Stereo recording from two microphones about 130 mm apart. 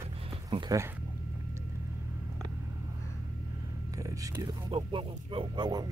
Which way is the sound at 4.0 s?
25° right (ahead or behind).